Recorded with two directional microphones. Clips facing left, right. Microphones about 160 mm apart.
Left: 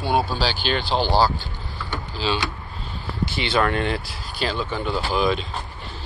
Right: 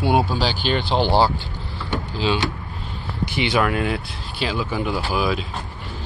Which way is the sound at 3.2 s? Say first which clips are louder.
Right 1 dB; 15° right (ahead or behind).